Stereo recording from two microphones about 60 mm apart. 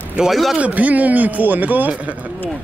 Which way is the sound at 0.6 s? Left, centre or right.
Right.